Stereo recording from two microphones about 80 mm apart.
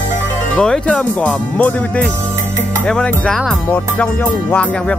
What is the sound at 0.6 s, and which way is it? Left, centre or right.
Music, centre.